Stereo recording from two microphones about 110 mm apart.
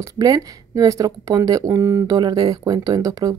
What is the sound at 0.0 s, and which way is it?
Speech, 35° right (ahead or behind).